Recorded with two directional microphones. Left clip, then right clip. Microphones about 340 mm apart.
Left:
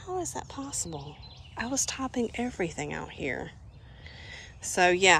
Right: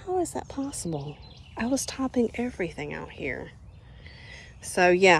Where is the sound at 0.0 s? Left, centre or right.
Centre.